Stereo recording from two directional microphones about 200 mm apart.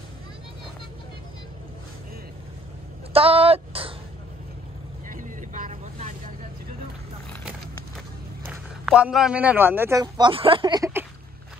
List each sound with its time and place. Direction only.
3.1 s a sound: 30° right (ahead or behind)
5.0 s vehicle: 40° right (ahead or behind)
8.5 s a man's voice: 5° right (ahead or behind)